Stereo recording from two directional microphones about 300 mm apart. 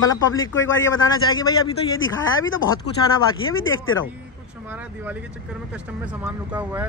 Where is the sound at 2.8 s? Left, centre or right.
Left.